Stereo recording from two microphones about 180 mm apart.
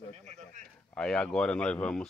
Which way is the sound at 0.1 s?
40° right (ahead or behind).